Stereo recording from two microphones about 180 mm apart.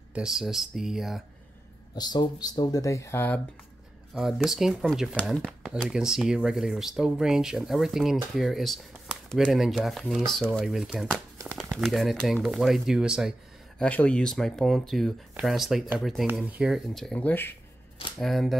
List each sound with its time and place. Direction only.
0.1 s speech: 5° right (ahead or behind)
2.0 s speech: 20° left (ahead or behind)
4.1 s speech: centre (ahead or behind)
13.7 s speech: 5° left (ahead or behind)